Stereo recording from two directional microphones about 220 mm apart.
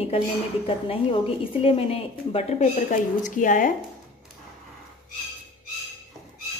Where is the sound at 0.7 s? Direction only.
25° left (ahead or behind).